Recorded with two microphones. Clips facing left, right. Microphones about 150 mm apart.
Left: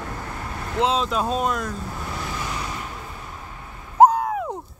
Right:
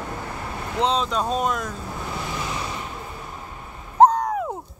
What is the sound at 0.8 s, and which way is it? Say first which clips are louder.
Speech: left 1 dB; 5° left (ahead or behind).